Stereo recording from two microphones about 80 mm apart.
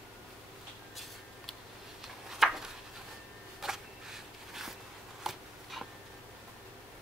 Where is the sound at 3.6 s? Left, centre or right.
Centre.